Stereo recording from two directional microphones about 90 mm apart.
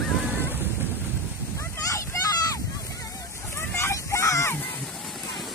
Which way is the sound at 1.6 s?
35° left (ahead or behind).